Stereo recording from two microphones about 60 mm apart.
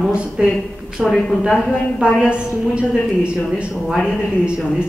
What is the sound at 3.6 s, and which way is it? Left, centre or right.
A woman's voice, centre.